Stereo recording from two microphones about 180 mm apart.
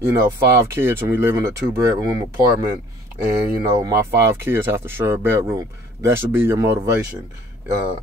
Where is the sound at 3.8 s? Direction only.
15° right (ahead or behind).